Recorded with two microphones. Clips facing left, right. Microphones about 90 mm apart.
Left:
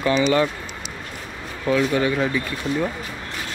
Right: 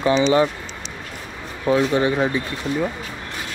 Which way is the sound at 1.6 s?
25° right (ahead or behind).